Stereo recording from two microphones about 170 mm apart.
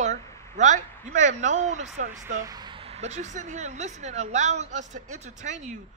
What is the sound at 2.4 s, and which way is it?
Speech, 25° right (ahead or behind).